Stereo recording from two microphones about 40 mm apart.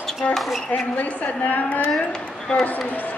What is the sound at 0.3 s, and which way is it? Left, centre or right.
Speech, centre.